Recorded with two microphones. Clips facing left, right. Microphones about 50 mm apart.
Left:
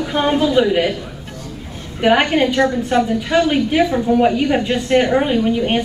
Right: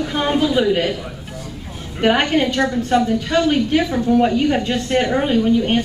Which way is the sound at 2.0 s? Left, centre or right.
Centre.